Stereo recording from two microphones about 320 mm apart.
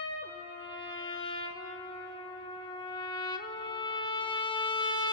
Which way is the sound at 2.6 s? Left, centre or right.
Centre.